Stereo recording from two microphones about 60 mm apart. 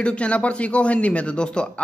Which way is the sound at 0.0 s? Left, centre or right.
Centre.